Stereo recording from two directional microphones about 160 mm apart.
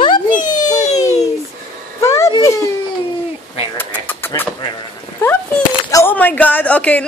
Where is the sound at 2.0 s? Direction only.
20° left (ahead or behind).